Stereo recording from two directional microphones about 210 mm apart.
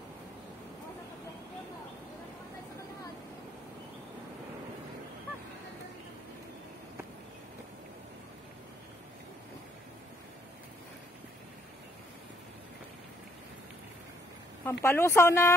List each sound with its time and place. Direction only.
14.6 s speech: 10° left (ahead or behind)